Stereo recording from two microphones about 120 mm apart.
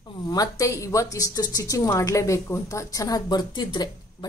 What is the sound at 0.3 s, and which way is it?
Speech, 30° left (ahead or behind).